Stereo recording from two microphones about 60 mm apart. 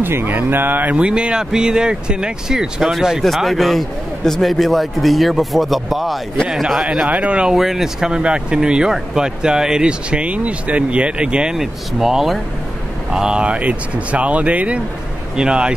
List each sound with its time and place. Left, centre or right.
0.0 s speech: right
0.9 s a man's voice: centre
7.5 s speech: centre
11.5 s a man's voice: centre